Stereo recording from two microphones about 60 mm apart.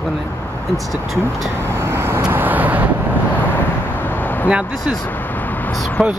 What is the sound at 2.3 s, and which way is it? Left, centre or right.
Vehicle, right.